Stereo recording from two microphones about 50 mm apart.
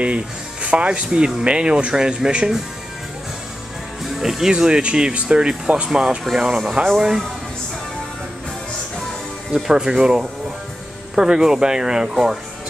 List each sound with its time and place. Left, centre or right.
0.0 s speech: right
4.0 s speech: centre
5.9 s speech: centre
9.6 s speech: centre